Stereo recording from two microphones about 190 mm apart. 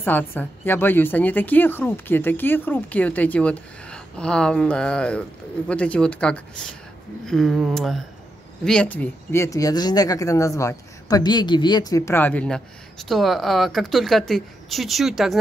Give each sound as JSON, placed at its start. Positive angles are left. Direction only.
{"t": 0.0, "sound": "a woman's voice", "side_deg": 10}